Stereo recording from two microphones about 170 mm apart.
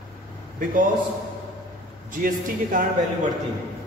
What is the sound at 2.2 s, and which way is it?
Speech, 55° right (ahead or behind).